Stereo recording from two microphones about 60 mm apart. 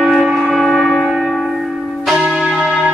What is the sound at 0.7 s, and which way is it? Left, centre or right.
Church bell, centre.